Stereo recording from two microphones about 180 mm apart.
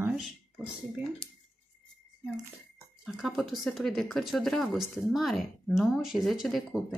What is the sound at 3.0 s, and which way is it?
Speech, centre (ahead or behind).